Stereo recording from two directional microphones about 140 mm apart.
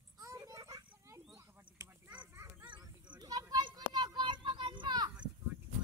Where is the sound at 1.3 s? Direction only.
15° right (ahead or behind); by 5.1 s 35° right (ahead or behind).